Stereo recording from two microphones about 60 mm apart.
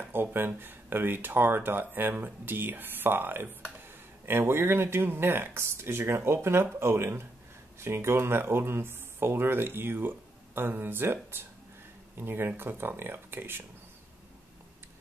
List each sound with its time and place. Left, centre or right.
0.0 s speech: right